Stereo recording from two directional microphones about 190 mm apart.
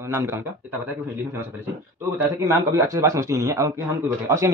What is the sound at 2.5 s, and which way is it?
A man's voice, 15° right (ahead or behind).